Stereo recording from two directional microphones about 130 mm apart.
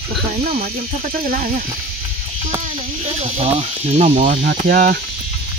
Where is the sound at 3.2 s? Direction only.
60° right (ahead or behind).